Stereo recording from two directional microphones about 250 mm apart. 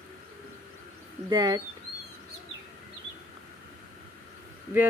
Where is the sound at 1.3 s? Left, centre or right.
Centre.